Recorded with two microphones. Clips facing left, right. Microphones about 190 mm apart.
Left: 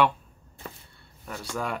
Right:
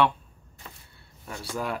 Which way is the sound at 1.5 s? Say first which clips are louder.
Even; 5° right (ahead or behind).